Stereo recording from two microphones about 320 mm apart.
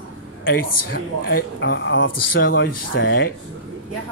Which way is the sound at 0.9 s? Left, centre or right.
Left.